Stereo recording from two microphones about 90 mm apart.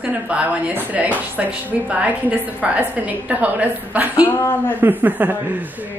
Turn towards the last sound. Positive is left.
turn(degrees=-20)  # may be behind; listen again after turning